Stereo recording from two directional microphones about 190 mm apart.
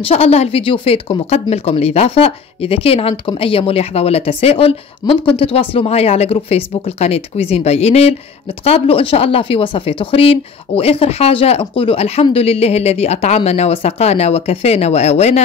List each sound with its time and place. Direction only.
0.0 s speech: 30° left (ahead or behind)